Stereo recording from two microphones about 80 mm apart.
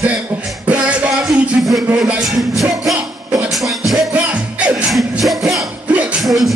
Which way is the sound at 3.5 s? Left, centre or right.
Centre.